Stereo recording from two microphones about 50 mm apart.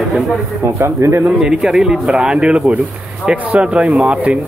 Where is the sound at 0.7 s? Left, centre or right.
Right.